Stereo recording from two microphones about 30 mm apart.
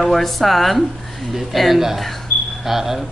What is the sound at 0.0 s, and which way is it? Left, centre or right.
A man's voice, centre.